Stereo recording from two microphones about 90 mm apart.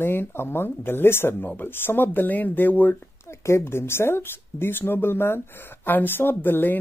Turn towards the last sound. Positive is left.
turn(degrees=20)  # may be behind; listen again after turning